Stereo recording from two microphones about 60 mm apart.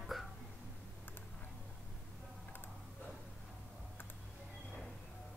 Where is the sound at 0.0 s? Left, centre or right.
Centre.